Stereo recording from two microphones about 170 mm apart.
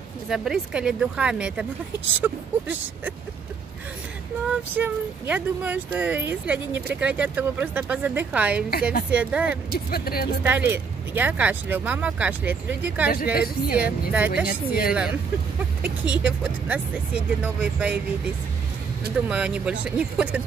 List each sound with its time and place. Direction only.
0.3 s speech: 5° right (ahead or behind)
4.7 s speech: 10° right (ahead or behind)
9.8 s a woman's voice: 60° left (ahead or behind)
10.4 s speech: 10° right (ahead or behind)
13.1 s a woman's voice: 60° left (ahead or behind)
14.1 s speech: 10° right (ahead or behind)
14.4 s a woman's voice: 60° left (ahead or behind)
15.8 s speech: 10° right (ahead or behind)